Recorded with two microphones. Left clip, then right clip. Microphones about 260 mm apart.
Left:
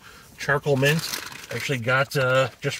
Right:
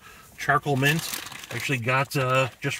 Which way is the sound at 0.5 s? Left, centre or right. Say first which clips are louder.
Left 2 dB; centre.